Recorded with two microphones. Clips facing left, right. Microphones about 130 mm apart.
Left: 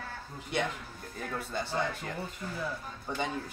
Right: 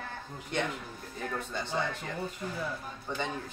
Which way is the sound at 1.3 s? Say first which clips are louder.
Left 2 dB; 10° left (ahead or behind).